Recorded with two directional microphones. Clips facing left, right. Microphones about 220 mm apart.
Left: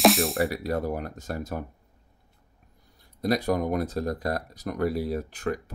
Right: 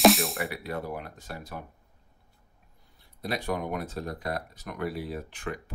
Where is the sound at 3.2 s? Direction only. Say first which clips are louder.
Left 6 dB; 40° left (ahead or behind).